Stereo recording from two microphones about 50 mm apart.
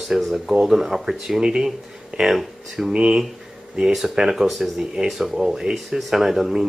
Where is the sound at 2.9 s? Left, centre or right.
Centre.